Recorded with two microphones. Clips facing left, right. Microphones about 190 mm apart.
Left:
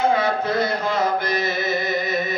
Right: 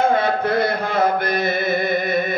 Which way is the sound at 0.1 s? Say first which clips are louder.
Right 2 dB; 55° right (ahead or behind).